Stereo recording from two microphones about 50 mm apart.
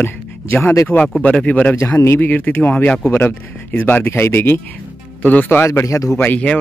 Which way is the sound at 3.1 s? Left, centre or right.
Left.